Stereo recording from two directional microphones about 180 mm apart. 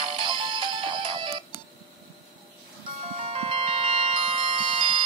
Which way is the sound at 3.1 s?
30° right (ahead or behind).